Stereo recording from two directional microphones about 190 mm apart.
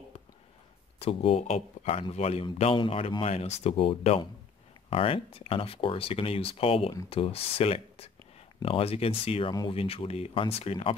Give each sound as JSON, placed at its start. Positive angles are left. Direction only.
{"t": 0.9, "sound": "speech", "side_deg": 30}